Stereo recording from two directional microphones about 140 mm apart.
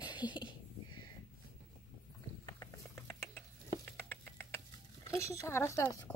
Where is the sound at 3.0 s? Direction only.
10° left (ahead or behind).